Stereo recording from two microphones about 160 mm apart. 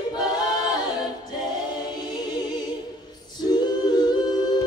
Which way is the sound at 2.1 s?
25° left (ahead or behind).